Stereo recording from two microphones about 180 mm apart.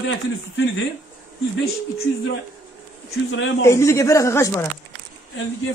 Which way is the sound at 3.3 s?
90° left.